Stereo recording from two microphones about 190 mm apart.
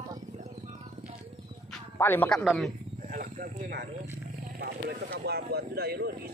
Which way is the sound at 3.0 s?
45° right (ahead or behind).